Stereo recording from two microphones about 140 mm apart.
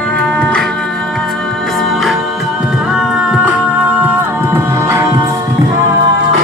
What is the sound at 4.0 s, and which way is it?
Music, 15° right (ahead or behind).